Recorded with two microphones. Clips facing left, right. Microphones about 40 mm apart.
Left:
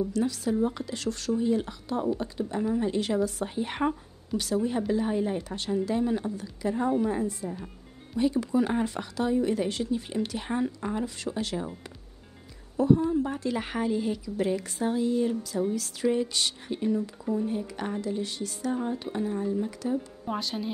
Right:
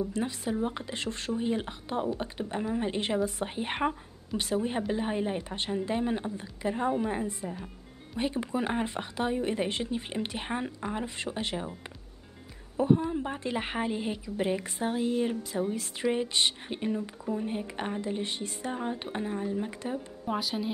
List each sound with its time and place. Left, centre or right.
0.1 s a woman's voice: right
12.7 s a woman's voice: right
20.2 s a woman's voice: centre